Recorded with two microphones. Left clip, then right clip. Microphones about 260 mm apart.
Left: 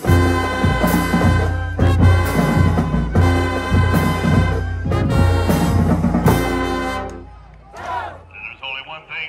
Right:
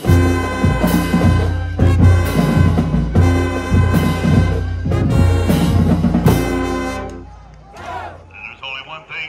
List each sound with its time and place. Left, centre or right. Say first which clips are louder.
0.0 s music: even; centre
7.8 s frog: left 2 dB; centre
8.6 s a sound: right 1 dB; left